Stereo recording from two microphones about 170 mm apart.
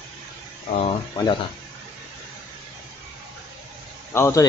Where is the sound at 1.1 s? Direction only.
20° left (ahead or behind).